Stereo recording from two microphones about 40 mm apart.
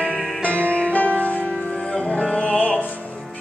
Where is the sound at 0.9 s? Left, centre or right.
Left.